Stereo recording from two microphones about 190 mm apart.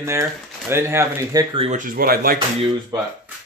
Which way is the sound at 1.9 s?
50° right (ahead or behind).